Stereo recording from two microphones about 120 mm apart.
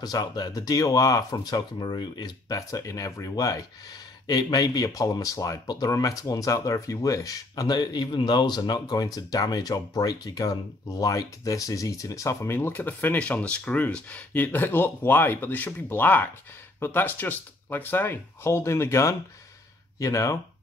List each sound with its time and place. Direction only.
0.0 s speech: 35° left (ahead or behind)